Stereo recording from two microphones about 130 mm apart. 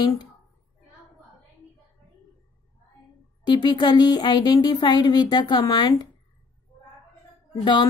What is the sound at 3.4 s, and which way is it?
Speech, 35° left (ahead or behind).